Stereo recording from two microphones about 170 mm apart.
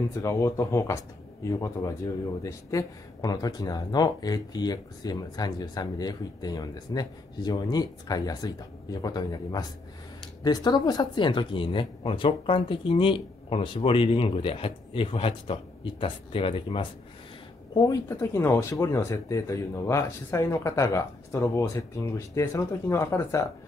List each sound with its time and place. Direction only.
0.2 s speech: 20° left (ahead or behind)
17.7 s speech: 20° left (ahead or behind)